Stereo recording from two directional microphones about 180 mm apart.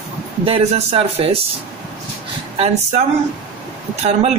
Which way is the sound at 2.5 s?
35° right (ahead or behind).